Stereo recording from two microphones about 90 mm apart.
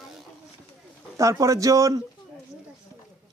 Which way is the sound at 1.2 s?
35° right (ahead or behind).